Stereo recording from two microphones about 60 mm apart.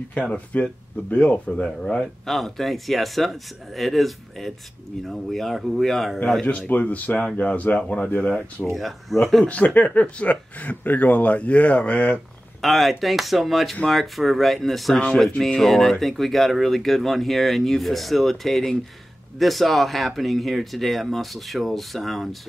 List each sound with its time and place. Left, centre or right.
0.2 s speech: left
2.2 s speech: centre
6.7 s speech: left
8.7 s speech: centre
9.8 s speech: left
12.6 s speech: centre